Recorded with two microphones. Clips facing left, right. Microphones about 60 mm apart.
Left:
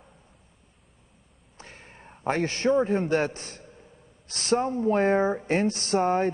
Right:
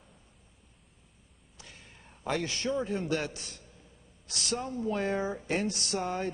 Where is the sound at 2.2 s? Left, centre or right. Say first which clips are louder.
Left 7 dB; left.